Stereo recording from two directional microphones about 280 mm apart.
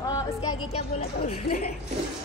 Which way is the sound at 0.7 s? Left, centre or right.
Left.